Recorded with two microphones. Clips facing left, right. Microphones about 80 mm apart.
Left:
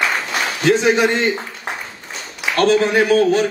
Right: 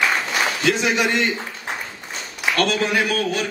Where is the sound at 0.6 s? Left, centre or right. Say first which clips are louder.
Left 8 dB; left.